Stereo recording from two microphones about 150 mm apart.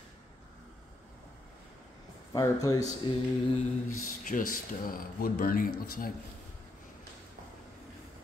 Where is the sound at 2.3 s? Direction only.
25° left (ahead or behind).